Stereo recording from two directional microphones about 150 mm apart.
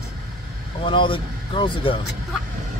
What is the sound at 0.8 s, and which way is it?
Speech, 35° left (ahead or behind).